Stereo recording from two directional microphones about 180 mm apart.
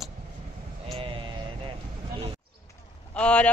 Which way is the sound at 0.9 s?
30° right (ahead or behind).